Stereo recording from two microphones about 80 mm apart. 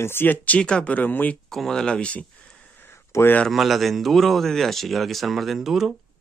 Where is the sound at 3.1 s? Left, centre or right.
Left.